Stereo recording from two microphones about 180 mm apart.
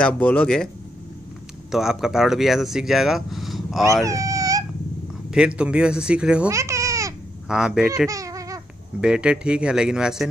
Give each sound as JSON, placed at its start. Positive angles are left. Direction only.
{"t": 0.0, "sound": "speech", "side_deg": 5}
{"t": 1.7, "sound": "speech", "side_deg": 0}
{"t": 4.0, "sound": "a sound", "side_deg": -20}
{"t": 5.6, "sound": "speech", "side_deg": -5}
{"t": 6.5, "sound": "a sound", "side_deg": -15}
{"t": 7.4, "sound": "speech", "side_deg": -5}
{"t": 8.1, "sound": "babbling", "side_deg": -20}
{"t": 9.0, "sound": "speech", "side_deg": -5}